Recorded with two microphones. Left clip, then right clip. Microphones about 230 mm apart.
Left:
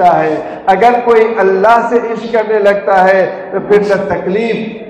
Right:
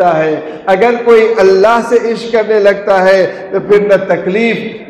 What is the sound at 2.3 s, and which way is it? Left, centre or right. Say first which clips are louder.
A man's voice: right 1 dB; right.